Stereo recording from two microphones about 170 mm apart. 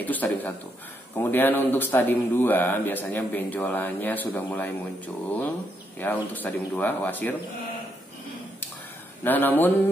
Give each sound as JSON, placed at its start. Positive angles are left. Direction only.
{"t": 0.0, "sound": "speech", "side_deg": 10}
{"t": 9.2, "sound": "speech", "side_deg": 10}